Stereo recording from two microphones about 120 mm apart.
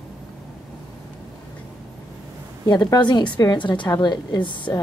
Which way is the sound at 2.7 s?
35° left (ahead or behind).